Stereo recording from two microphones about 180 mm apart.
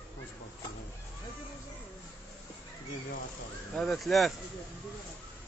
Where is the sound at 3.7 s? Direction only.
Centre (ahead or behind).